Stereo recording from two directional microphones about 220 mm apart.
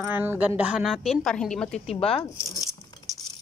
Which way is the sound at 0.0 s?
10° right (ahead or behind).